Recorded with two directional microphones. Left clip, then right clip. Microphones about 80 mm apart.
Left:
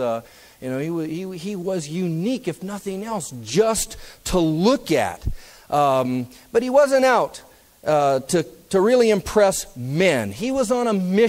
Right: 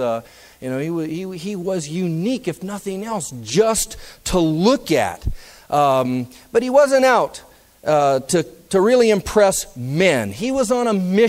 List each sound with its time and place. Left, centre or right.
0.0 s speech: left